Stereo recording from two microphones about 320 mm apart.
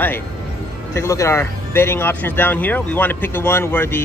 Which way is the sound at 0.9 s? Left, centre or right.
Centre.